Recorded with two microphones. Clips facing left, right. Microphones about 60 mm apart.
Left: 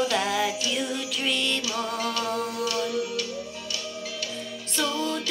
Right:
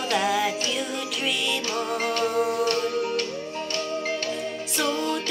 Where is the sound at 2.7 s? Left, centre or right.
Right.